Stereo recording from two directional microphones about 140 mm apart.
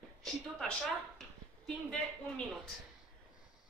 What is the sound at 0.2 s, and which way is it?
A woman's voice, 5° left (ahead or behind).